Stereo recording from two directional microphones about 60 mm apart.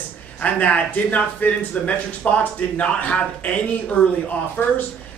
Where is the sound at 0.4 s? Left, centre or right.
Left.